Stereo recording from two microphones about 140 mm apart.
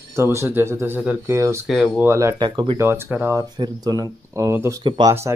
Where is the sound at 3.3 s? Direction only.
30° right (ahead or behind).